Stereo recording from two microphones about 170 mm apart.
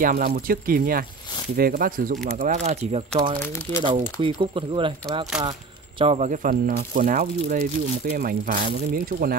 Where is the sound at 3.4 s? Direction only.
15° left (ahead or behind).